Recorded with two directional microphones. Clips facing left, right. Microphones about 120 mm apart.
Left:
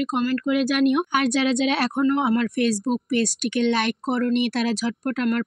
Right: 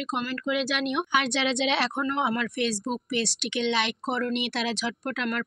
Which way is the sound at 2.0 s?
35° left (ahead or behind).